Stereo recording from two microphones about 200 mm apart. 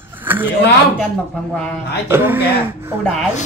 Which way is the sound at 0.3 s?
10° right (ahead or behind).